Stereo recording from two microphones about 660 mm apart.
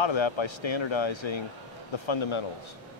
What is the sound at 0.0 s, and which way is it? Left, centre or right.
Speech, left.